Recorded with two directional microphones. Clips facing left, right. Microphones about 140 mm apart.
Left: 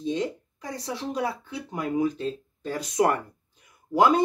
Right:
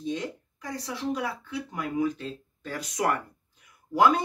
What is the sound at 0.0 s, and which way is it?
Speech, 25° left (ahead or behind).